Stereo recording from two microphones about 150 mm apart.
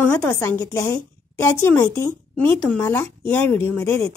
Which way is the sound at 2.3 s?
10° left (ahead or behind).